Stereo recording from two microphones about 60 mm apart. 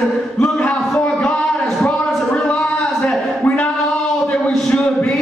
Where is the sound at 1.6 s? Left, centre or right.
Centre.